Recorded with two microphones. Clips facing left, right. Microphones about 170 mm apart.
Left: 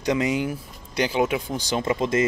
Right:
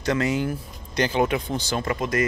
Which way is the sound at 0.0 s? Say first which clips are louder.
Even; 15° left (ahead or behind).